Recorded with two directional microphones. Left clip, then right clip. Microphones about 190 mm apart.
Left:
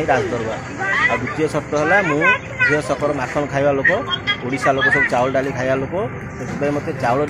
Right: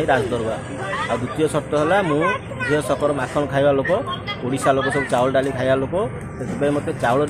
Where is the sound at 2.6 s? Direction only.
5° right (ahead or behind).